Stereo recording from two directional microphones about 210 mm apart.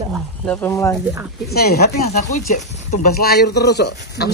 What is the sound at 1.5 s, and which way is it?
Speech, 45° left (ahead or behind).